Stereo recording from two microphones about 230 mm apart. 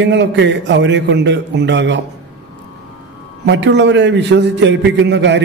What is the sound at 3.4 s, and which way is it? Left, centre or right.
A man's voice, right.